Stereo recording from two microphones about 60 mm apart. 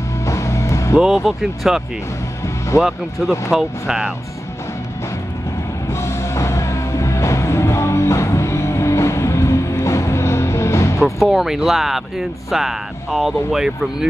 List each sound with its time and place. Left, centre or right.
0.2 s music: left
0.9 s speech: centre
2.8 s speech: centre
5.9 s music: left
11.0 s speech: centre